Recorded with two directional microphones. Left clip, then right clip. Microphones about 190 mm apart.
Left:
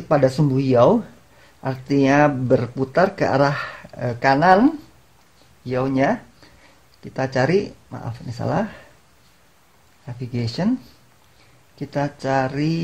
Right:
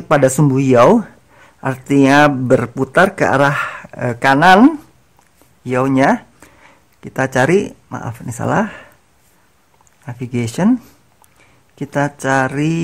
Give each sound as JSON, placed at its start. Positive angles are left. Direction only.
{"t": 0.1, "sound": "speech", "side_deg": -25}
{"t": 5.7, "sound": "speech", "side_deg": -20}
{"t": 10.0, "sound": "speech", "side_deg": -20}
{"t": 11.8, "sound": "speech", "side_deg": -20}